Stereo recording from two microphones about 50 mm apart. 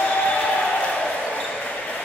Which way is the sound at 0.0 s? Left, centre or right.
Left.